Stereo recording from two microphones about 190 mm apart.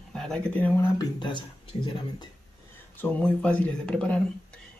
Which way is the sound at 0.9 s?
25° left (ahead or behind).